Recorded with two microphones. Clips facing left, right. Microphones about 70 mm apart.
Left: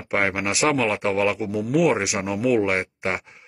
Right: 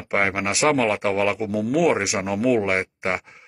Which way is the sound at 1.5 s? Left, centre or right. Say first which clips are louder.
Right 1 dB; right.